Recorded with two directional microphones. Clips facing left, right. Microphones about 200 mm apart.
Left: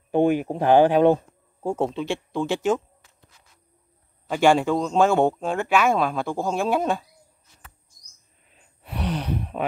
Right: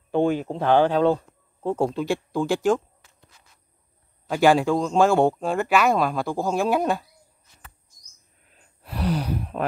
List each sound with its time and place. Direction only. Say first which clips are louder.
0.1 s speech: left 2 dB; 15° left (ahead or behind)
1.9 s speech: right 2 dB; centre (ahead or behind)
4.3 s speech: even; centre (ahead or behind)
8.5 s gasp: left 1 dB; centre (ahead or behind)